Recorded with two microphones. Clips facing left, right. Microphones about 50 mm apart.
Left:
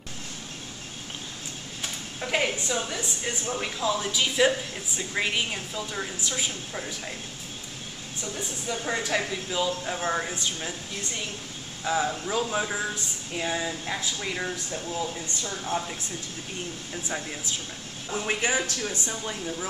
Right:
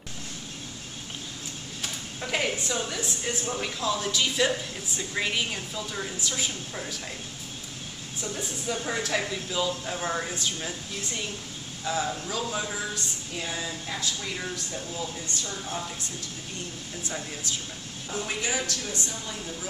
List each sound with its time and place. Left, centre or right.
1.8 s a woman's voice: centre
8.4 s a woman's voice: centre
18.1 s a woman's voice: left